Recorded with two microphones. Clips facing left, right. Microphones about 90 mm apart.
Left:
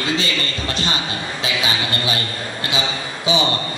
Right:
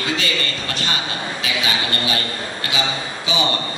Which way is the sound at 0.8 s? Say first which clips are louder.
Right 2 dB; 25° left (ahead or behind).